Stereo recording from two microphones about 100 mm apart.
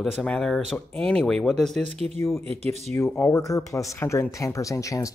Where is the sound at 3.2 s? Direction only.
35° left (ahead or behind).